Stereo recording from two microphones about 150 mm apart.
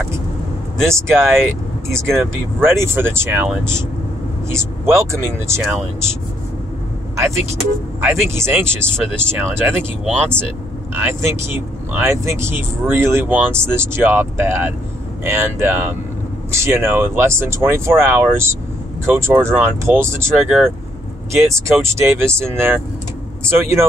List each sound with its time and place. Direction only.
0.8 s speech: 15° right (ahead or behind)
2.8 s speech: 15° right (ahead or behind)
4.8 s speech: 20° right (ahead or behind)
5.6 s speech: centre (ahead or behind)
7.2 s speech: 20° right (ahead or behind)
23.4 s speech: 15° right (ahead or behind)